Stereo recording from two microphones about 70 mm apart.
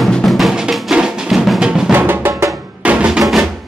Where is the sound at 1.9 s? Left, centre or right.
Right.